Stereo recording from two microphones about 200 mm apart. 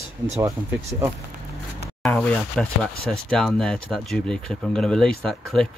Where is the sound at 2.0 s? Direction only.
5° left (ahead or behind).